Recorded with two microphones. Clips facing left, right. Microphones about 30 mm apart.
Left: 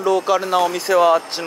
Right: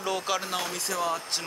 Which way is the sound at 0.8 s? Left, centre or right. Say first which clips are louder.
Left 15 dB; left.